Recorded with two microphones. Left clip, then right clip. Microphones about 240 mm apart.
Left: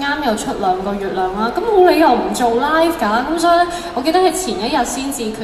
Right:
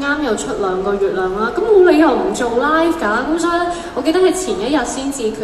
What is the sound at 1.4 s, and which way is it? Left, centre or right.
A woman's voice, left.